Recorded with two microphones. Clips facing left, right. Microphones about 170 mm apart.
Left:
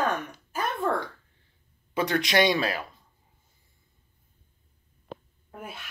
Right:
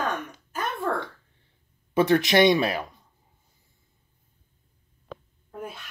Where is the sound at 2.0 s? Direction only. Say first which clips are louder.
Right 5 dB; 25° right (ahead or behind).